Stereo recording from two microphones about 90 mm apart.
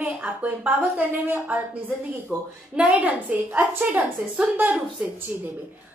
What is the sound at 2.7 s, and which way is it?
A child's voice, 15° right (ahead or behind).